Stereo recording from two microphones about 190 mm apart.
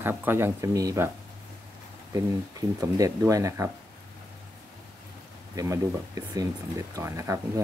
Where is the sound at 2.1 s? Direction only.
15° right (ahead or behind).